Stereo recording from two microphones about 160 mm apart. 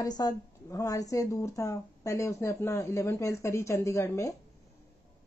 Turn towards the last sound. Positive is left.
turn(degrees=20)  # may be behind; listen again after turning